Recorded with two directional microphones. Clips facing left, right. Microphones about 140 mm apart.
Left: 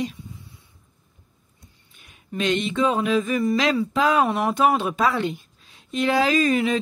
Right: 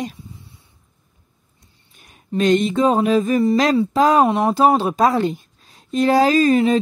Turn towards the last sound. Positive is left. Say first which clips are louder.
# right 6 dB
turn(degrees=-35)  # may be behind; listen again after turning